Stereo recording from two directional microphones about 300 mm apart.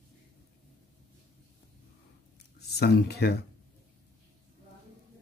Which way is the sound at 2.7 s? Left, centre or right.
Left.